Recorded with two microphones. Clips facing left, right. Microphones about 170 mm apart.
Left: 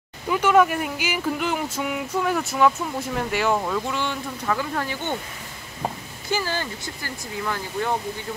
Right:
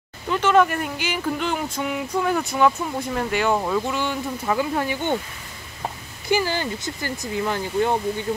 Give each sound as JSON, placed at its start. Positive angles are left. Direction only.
{"t": 0.3, "sound": "speech", "side_deg": 10}
{"t": 4.5, "sound": "speech", "side_deg": -15}
{"t": 6.3, "sound": "speech", "side_deg": -15}